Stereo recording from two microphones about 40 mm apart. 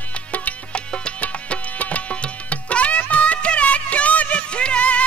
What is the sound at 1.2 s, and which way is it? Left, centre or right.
Music, left.